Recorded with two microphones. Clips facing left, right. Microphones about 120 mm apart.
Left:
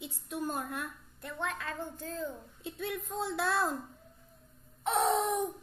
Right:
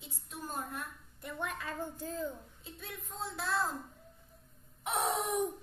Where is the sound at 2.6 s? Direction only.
70° left (ahead or behind).